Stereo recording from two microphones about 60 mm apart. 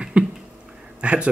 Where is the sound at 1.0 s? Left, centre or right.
Centre.